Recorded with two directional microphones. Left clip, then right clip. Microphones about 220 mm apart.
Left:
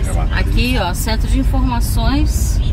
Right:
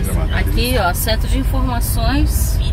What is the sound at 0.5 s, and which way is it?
A woman's voice, 20° left (ahead or behind).